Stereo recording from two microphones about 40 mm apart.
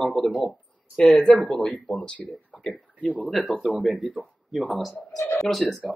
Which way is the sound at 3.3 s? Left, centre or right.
Centre.